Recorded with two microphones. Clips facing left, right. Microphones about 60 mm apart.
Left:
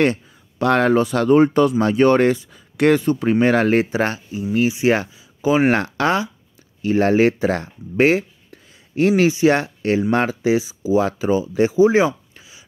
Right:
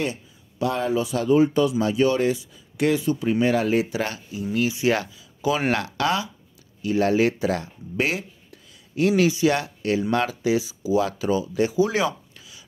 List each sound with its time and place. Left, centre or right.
0.0 s speech: left
3.9 s speech: left